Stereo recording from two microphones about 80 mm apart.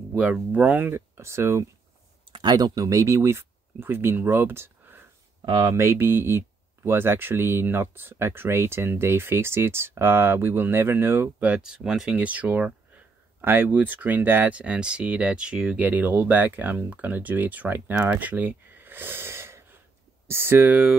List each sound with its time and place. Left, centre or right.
0.2 s speech: centre; by 1.7 s right
2.3 s speech: right
5.4 s speech: right
5.7 s speech: right
11.3 s speech: centre
12.2 s speech: centre
18.0 s a sound: centre
20.2 s speech: right